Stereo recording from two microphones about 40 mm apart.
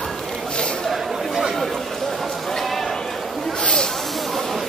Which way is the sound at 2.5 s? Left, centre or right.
Centre.